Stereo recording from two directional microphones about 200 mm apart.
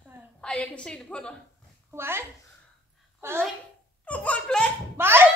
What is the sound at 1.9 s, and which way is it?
Speech, 10° right (ahead or behind).